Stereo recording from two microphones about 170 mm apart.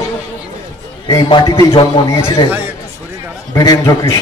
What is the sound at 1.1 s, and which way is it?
Speech, 25° left (ahead or behind).